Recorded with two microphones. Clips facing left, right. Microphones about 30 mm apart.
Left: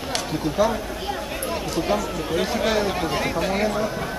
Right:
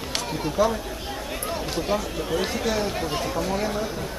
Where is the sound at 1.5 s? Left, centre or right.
Centre.